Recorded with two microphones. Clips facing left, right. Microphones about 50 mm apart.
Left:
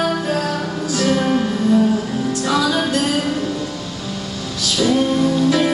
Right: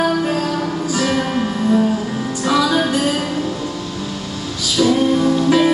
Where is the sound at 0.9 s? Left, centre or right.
Centre.